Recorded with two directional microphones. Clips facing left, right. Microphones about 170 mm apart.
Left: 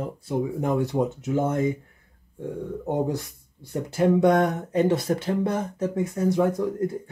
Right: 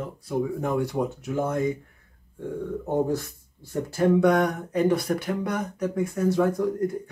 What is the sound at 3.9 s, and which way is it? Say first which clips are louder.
Speech: left 1 dB; 20° left (ahead or behind).